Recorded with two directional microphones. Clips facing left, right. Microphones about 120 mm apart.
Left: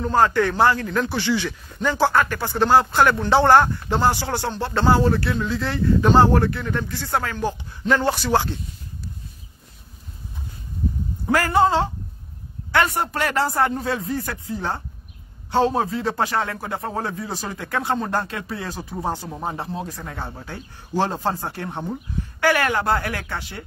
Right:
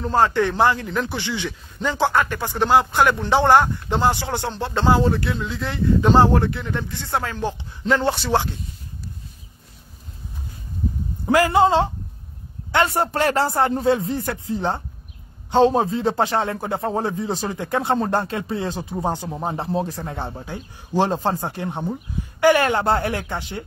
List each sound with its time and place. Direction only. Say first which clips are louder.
0.1 s a man's voice: even; 25° right (ahead or behind)
11.3 s a man's voice: right 2 dB; 15° right (ahead or behind)
12.7 s speech: right 2 dB; 30° right (ahead or behind)